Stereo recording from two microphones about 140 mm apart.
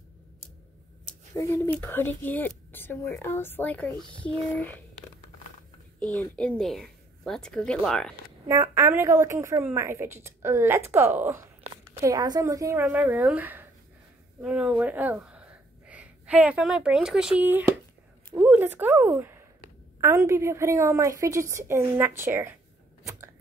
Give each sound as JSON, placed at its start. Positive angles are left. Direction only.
{"t": 1.3, "sound": "speech", "side_deg": 25}
{"t": 5.9, "sound": "speech", "side_deg": 10}
{"t": 8.5, "sound": "a woman's voice", "side_deg": -20}